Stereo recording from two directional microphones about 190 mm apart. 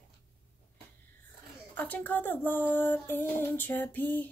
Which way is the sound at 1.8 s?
10° left (ahead or behind).